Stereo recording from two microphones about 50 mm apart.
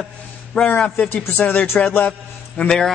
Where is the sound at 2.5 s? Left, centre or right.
Centre.